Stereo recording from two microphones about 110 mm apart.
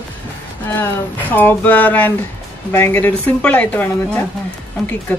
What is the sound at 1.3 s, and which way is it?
Speech, 15° left (ahead or behind).